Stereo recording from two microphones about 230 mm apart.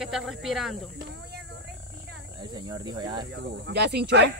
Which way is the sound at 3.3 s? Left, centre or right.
Right.